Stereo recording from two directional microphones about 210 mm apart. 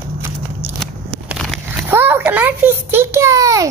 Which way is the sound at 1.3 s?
Centre (ahead or behind).